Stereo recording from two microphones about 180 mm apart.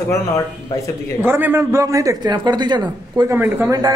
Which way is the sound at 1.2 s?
15° right (ahead or behind).